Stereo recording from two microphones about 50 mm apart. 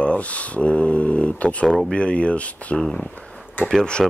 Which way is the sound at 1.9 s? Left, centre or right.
Left.